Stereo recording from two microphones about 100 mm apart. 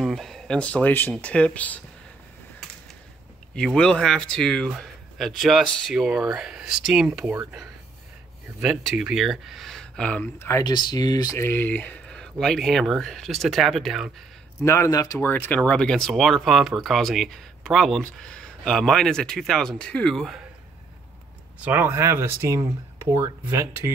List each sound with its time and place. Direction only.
0.0 s speech: centre (ahead or behind)
3.5 s speech: 10° left (ahead or behind)
8.5 s speech: 10° right (ahead or behind); by 10.3 s 15° left (ahead or behind)
10.6 s speech: 45° left (ahead or behind)
11.3 s speech: 25° left (ahead or behind); by 14.1 s centre (ahead or behind)
14.6 s speech: 30° left (ahead or behind)
15.1 s speech: 20° left (ahead or behind)
21.5 s speech: 15° right (ahead or behind)